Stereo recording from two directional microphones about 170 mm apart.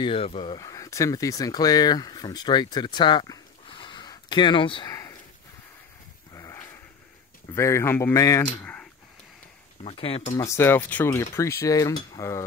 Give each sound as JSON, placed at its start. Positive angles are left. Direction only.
{"t": 0.0, "sound": "speech", "side_deg": 35}
{"t": 6.3, "sound": "a sound", "side_deg": 20}
{"t": 7.5, "sound": "speech", "side_deg": 15}
{"t": 9.8, "sound": "speech", "side_deg": 35}
{"t": 10.3, "sound": "speech", "side_deg": 20}